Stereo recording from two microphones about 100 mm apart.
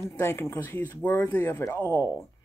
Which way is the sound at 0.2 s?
25° left (ahead or behind).